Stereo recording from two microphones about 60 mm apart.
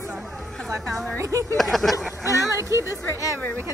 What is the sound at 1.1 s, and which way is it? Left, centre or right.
Speech, right.